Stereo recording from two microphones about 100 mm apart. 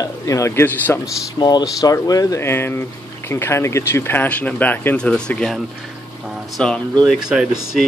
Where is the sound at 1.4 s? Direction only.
45° left (ahead or behind).